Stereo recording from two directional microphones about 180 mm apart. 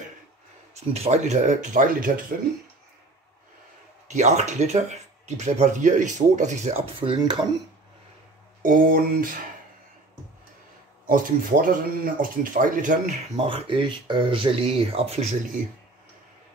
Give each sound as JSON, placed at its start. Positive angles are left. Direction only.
{"t": 0.7, "sound": "speech", "side_deg": -35}
{"t": 4.1, "sound": "speech", "side_deg": -40}
{"t": 7.0, "sound": "speech", "side_deg": -30}
{"t": 8.6, "sound": "speech", "side_deg": -50}
{"t": 11.1, "sound": "speech", "side_deg": -50}
{"t": 13.5, "sound": "speech", "side_deg": -25}